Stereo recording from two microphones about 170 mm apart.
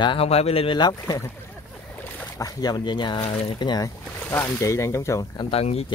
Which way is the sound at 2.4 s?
20° left (ahead or behind).